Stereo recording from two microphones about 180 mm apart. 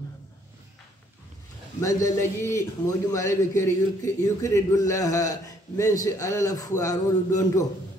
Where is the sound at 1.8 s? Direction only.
20° left (ahead or behind).